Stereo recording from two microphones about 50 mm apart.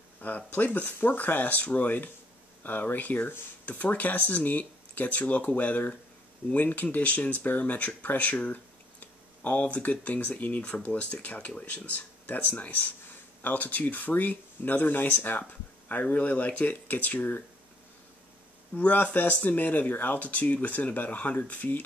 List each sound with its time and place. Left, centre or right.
0.5 s speech: left
18.7 s speech: left